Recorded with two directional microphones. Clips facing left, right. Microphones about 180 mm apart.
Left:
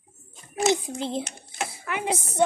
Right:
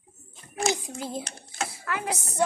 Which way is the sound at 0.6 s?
25° left (ahead or behind).